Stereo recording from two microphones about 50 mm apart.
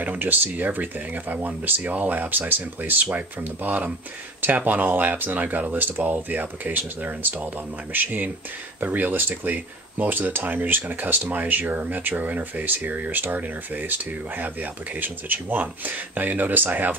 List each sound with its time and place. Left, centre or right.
0.0 s speech: right